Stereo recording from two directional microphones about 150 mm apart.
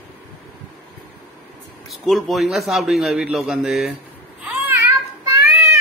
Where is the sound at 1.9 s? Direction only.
Centre (ahead or behind).